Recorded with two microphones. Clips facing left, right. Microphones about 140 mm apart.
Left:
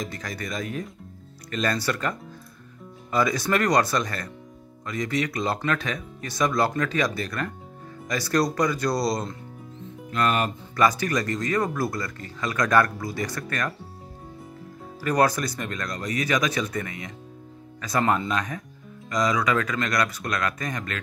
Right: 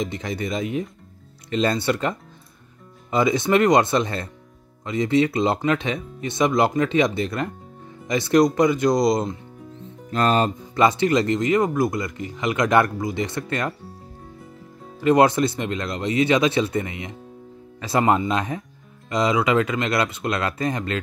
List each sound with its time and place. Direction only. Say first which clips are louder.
0.0 s speech: right 6 dB; 25° right (ahead or behind)
15.0 s speech: right 6 dB; 25° right (ahead or behind)